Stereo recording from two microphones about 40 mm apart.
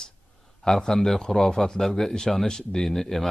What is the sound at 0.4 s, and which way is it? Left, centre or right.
A man's voice, centre.